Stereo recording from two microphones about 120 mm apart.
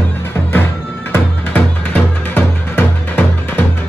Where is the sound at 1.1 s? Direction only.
15° left (ahead or behind).